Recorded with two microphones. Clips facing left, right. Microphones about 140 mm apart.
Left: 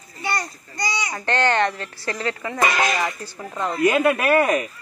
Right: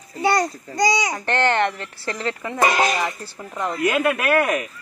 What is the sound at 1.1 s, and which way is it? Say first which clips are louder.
Speech: right 1 dB; 15° right (ahead or behind).